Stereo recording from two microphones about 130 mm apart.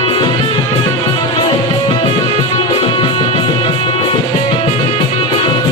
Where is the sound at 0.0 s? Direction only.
45° left (ahead or behind).